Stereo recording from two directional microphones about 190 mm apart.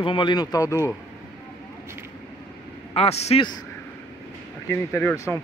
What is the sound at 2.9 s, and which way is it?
Speech, 30° left (ahead or behind).